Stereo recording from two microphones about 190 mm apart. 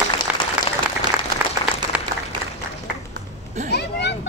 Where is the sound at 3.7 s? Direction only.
60° left (ahead or behind).